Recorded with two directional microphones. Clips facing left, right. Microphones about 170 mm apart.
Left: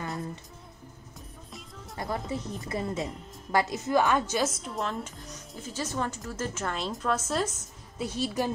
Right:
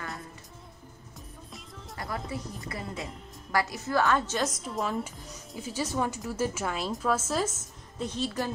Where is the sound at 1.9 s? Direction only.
25° left (ahead or behind); by 7.5 s 5° right (ahead or behind).